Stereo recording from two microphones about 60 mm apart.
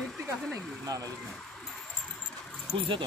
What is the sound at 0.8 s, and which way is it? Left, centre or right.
Speech, right.